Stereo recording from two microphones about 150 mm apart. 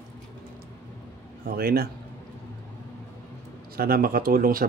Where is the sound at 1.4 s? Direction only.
90° right.